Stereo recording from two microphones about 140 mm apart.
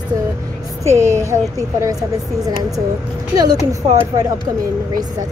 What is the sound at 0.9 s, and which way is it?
Speech, 20° right (ahead or behind).